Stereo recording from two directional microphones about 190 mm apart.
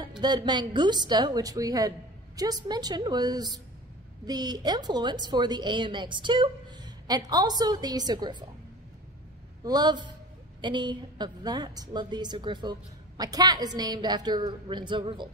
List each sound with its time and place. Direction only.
0.2 s a woman's voice: 25° right (ahead or behind)
9.6 s a woman's voice: 20° right (ahead or behind)